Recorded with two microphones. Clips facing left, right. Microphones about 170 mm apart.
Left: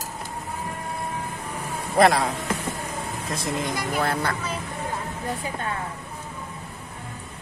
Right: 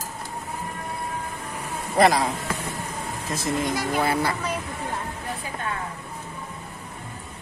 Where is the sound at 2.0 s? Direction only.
Centre (ahead or behind).